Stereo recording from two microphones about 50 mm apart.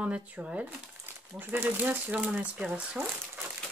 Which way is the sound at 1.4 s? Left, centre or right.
Right.